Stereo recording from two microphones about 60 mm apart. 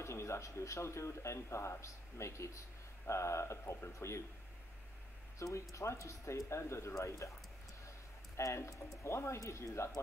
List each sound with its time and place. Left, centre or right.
0.0 s speech: left
5.4 s speech: left
8.4 s speech: left